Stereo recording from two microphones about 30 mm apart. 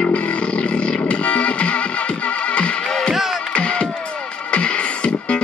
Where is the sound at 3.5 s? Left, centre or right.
Left.